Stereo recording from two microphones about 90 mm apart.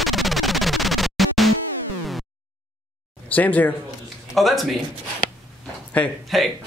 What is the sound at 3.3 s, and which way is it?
Speech, 15° left (ahead or behind).